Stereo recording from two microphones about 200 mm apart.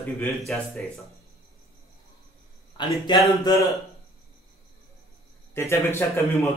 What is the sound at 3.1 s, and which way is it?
Speech, 20° left (ahead or behind).